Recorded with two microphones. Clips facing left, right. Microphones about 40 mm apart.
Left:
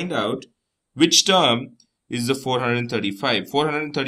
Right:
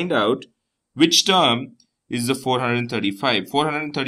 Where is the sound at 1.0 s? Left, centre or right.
Centre.